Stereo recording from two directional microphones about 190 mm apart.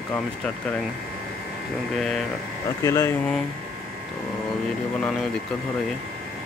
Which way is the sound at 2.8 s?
15° left (ahead or behind).